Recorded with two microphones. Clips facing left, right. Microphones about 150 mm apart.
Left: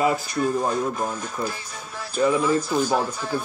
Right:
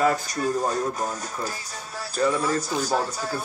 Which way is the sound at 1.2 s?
40° right (ahead or behind).